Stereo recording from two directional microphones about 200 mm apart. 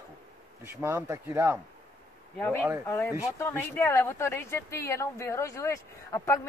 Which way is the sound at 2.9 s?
10° left (ahead or behind).